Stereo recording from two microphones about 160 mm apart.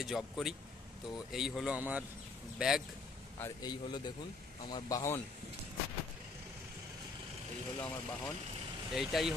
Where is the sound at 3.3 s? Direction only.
20° left (ahead or behind).